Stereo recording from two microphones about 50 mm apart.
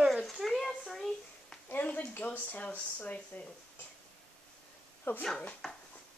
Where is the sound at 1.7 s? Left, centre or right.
Left.